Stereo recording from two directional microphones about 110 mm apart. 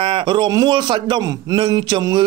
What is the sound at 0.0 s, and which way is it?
Speech, 50° right (ahead or behind).